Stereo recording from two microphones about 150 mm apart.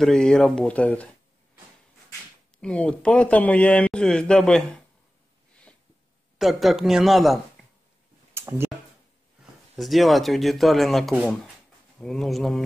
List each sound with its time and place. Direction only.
0.0 s speech: 5° left (ahead or behind)
2.6 s speech: 10° left (ahead or behind)
6.3 s speech: centre (ahead or behind)
8.4 s a sound: 15° right (ahead or behind)
9.4 s speech: centre (ahead or behind)